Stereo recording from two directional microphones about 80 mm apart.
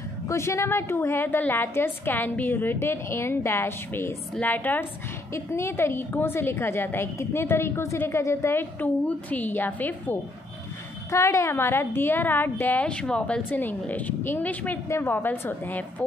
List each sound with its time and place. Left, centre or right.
0.3 s a woman's voice: left
5.3 s a woman's voice: left
11.1 s a woman's voice: left
12.8 s speech: centre
13.5 s a woman's voice: left